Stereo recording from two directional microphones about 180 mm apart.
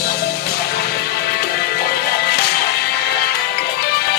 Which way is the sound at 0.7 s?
60° left (ahead or behind).